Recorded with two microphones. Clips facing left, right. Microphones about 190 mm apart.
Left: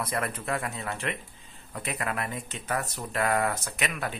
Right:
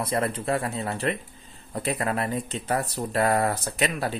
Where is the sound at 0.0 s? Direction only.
30° right (ahead or behind).